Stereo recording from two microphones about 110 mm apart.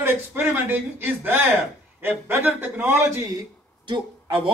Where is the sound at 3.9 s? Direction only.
45° right (ahead or behind).